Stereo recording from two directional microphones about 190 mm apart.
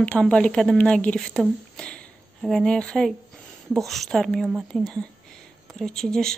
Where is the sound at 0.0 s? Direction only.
5° left (ahead or behind).